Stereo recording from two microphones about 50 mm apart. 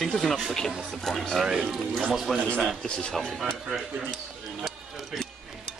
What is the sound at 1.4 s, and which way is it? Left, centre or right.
Speech, centre.